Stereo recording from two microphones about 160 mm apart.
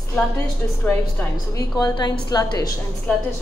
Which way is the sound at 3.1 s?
10° left (ahead or behind).